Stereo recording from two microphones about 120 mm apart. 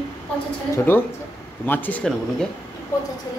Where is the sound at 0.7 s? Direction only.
15° left (ahead or behind).